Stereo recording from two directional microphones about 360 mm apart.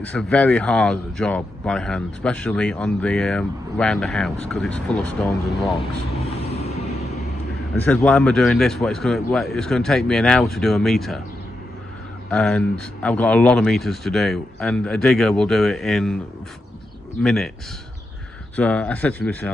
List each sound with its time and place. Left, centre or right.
0.1 s speech: centre
7.8 s speech: centre
12.3 s speech: centre
17.2 s speech: centre
18.6 s speech: centre